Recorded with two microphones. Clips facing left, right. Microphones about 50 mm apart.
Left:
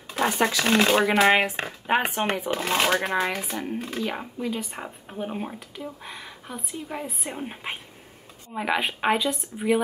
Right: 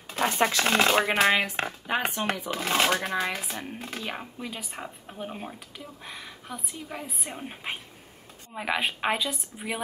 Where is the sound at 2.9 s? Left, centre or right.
Left.